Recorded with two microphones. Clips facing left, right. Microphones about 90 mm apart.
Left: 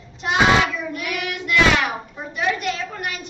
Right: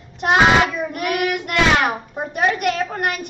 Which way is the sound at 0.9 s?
50° right (ahead or behind).